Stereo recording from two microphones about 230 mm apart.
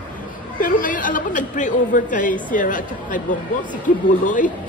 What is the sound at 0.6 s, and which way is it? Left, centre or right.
A woman's voice, left.